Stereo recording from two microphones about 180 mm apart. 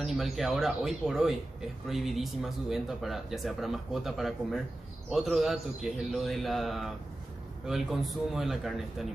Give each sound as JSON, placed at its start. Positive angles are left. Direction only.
{"t": 0.0, "sound": "speech", "side_deg": 0}